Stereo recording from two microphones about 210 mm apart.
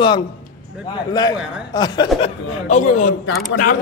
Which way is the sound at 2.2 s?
35° left (ahead or behind).